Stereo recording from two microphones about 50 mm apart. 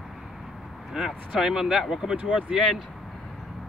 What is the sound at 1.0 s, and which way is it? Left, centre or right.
Speech, centre.